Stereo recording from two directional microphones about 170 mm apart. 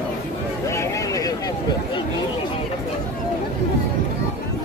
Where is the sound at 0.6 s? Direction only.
15° left (ahead or behind).